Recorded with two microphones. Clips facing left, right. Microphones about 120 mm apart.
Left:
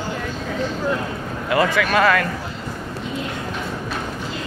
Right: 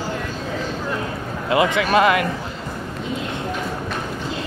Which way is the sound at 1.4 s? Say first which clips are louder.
Right 1 dB; 20° right (ahead or behind).